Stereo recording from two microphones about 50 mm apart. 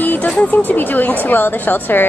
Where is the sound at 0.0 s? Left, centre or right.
Left.